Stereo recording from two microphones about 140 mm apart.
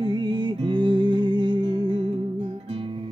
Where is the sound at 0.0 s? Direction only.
35° right (ahead or behind).